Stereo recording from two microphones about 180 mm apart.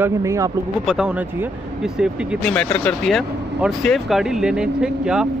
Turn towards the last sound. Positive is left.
turn(degrees=-5)  # may be behind; listen again after turning